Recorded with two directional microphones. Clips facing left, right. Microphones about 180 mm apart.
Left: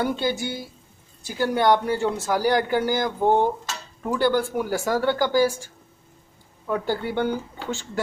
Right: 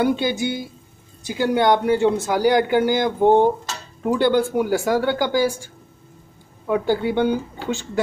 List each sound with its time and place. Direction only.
0.0 s speech: 15° right (ahead or behind)